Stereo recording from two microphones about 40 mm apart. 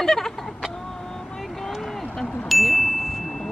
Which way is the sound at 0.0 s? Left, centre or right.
Centre.